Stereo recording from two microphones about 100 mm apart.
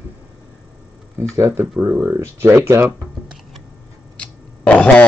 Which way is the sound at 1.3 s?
30° right (ahead or behind).